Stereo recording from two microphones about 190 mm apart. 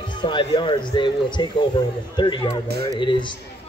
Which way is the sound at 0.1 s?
25° left (ahead or behind).